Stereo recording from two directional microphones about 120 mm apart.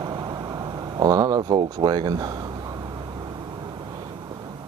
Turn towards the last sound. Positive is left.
turn(degrees=-35)  # may be behind; listen again after turning